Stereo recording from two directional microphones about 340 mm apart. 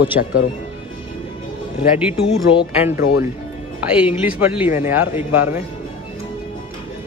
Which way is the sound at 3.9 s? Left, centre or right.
Centre.